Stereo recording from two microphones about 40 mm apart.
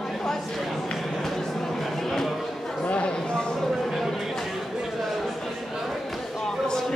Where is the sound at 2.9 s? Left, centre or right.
Left.